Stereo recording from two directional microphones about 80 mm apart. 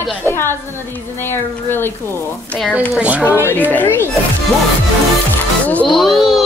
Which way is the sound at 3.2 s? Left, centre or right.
Left.